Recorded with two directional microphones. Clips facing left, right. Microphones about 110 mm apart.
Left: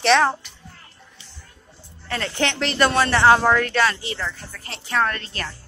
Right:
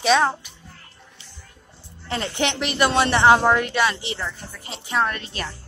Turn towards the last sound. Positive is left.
turn(degrees=-15)  # may be behind; listen again after turning